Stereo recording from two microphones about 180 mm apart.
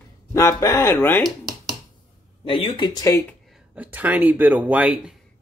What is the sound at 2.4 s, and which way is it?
Speech, 25° left (ahead or behind).